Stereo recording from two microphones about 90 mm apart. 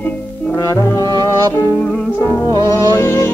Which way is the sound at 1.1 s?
45° right (ahead or behind).